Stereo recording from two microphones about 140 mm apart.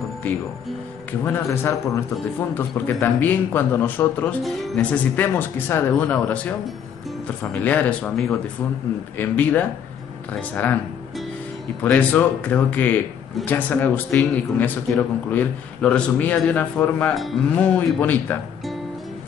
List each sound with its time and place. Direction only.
1.2 s a man's voice: 15° left (ahead or behind)
11.8 s a man's voice: 10° left (ahead or behind)